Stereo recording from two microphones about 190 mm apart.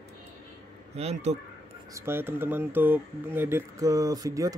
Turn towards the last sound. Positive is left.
turn(degrees=-20)  # may be behind; listen again after turning